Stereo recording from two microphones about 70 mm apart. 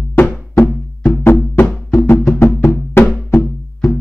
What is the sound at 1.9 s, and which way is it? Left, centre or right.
Music, left.